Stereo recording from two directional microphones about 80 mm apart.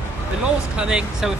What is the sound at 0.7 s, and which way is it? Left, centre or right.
Speech, centre.